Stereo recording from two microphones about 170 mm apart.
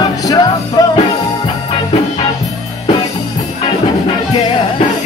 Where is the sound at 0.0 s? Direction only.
20° left (ahead or behind).